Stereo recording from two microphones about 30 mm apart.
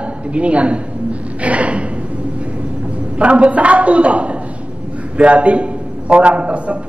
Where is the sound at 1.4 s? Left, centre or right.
Right.